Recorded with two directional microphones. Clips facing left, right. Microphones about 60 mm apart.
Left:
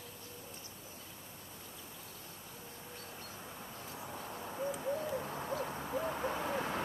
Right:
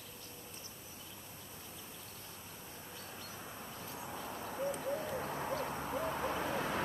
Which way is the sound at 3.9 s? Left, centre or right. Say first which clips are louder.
Even; centre.